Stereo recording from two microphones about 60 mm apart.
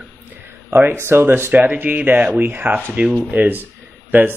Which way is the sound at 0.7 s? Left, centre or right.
Right.